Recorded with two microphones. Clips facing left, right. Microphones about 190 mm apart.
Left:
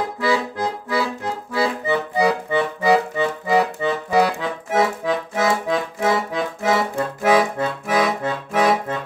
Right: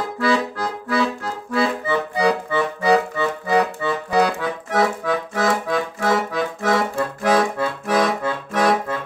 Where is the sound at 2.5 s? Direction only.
15° left (ahead or behind).